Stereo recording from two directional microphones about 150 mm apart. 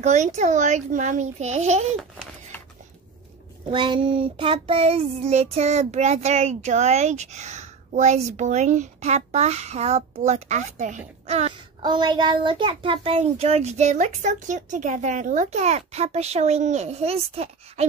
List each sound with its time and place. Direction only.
0.0 s a child's voice: 50° right (ahead or behind)
3.7 s a child's voice: 30° right (ahead or behind)
11.8 s a child's voice: 30° right (ahead or behind)